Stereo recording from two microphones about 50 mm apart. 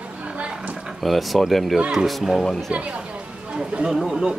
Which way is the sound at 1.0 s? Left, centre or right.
Centre.